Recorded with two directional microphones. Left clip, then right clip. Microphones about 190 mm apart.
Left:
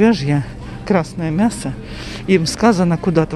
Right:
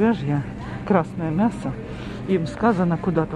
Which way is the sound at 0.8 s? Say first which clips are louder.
Left 3 dB; 25° left (ahead or behind).